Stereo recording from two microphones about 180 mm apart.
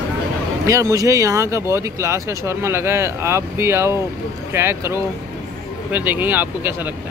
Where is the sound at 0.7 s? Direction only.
20° right (ahead or behind).